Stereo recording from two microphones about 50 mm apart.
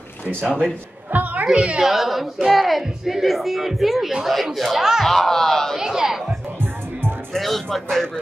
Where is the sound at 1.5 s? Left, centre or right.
Centre.